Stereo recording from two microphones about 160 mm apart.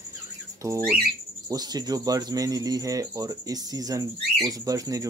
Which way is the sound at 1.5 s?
25° right (ahead or behind).